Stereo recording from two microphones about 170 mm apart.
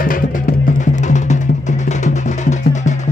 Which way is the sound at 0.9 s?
45° left (ahead or behind).